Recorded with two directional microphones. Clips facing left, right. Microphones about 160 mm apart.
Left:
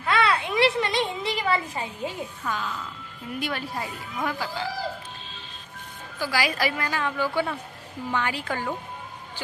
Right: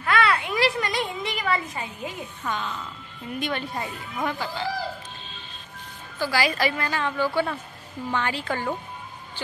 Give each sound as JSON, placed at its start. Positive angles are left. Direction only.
{"t": 0.0, "sound": "a sound", "side_deg": 25}
{"t": 2.5, "sound": "a woman's voice", "side_deg": 5}
{"t": 6.1, "sound": "a woman's voice", "side_deg": 10}